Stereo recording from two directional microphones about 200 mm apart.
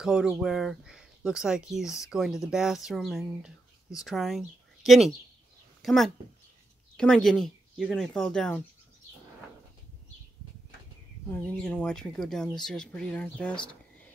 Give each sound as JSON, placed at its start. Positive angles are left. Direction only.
{"t": 0.0, "sound": "speech", "side_deg": -5}
{"t": 11.2, "sound": "speech", "side_deg": 10}